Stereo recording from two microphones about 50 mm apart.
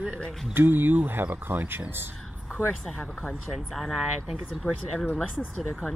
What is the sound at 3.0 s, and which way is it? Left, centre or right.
Speech, left.